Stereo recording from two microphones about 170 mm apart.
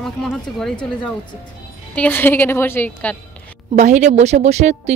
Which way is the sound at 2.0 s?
10° left (ahead or behind).